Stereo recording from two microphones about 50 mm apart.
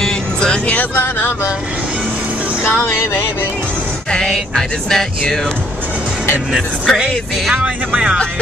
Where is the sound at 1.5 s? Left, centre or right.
Right.